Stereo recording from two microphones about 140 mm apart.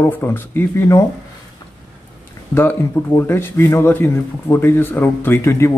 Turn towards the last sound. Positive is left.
turn(degrees=20)  # may be behind; listen again after turning